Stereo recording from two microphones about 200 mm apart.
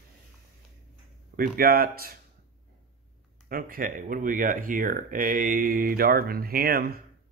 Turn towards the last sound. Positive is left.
turn(degrees=-50)  # may be behind; listen again after turning